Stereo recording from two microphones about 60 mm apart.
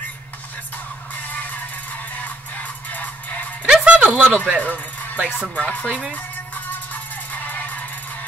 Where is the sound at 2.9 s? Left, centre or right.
Left.